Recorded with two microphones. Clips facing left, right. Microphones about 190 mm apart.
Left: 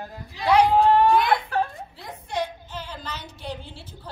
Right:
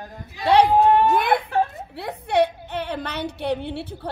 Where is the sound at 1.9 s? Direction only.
65° right (ahead or behind).